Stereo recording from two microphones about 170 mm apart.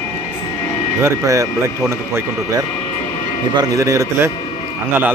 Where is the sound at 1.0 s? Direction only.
20° right (ahead or behind).